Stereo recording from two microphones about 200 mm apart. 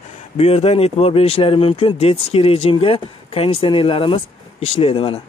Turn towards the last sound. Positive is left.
turn(degrees=30)  # may be behind; listen again after turning